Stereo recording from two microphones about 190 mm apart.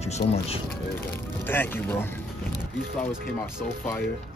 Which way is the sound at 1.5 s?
10° left (ahead or behind).